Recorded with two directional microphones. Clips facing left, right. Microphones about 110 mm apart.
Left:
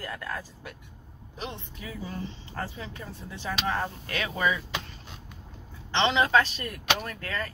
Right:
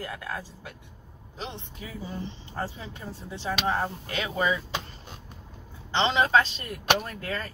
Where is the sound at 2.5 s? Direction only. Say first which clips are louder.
Right 3 dB; 20° right (ahead or behind).